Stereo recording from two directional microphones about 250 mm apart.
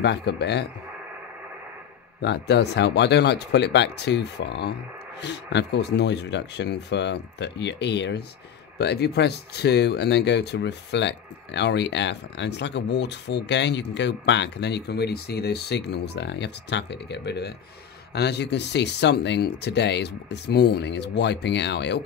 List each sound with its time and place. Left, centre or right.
0.0 s a man's voice: left
2.2 s speech: left